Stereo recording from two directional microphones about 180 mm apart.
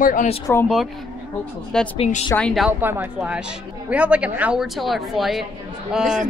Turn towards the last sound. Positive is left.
turn(degrees=-5)  # may be behind; listen again after turning